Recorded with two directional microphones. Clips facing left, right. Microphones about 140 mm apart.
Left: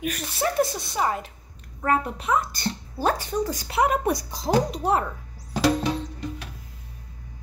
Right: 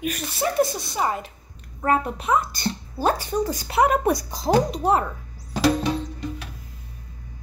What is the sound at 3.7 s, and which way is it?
Speech, 50° right (ahead or behind).